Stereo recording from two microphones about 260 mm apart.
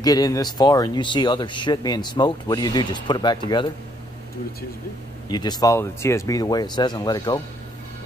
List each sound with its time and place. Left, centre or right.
0.0 s speech: centre
5.3 s speech: centre